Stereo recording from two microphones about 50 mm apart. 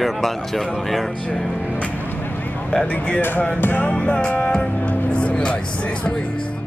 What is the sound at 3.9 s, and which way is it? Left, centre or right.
Music, centre.